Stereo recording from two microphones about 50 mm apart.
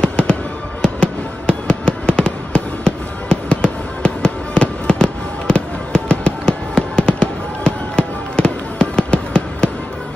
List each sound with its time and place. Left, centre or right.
0.0 s fireworks: left